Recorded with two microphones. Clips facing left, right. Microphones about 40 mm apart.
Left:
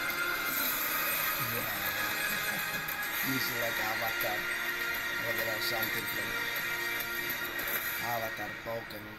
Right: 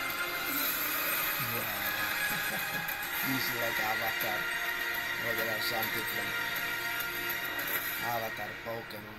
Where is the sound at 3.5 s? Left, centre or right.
Right.